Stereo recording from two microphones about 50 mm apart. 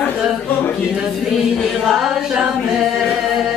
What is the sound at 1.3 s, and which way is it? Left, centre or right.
Chant, centre.